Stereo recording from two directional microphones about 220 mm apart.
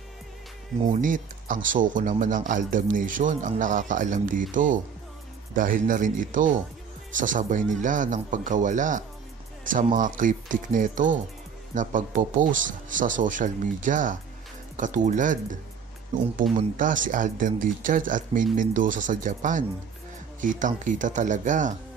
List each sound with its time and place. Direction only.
0.8 s speech: 35° right (ahead or behind)
16.5 s speech: 35° right (ahead or behind)